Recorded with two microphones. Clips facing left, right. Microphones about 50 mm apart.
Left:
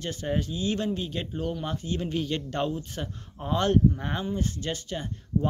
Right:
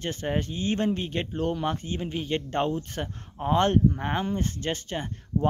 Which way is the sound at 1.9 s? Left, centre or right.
Right.